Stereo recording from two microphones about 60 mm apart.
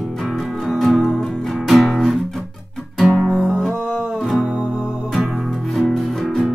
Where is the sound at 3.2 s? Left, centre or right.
Centre.